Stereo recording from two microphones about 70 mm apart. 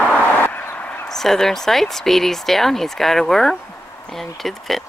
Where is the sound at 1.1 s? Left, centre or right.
Centre.